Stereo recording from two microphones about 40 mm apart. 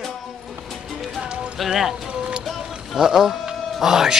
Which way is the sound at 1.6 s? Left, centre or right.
Centre.